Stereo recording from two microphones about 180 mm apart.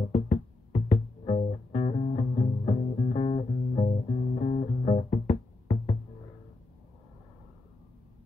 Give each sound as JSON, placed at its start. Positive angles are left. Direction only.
{"t": 0.1, "sound": "music", "side_deg": 35}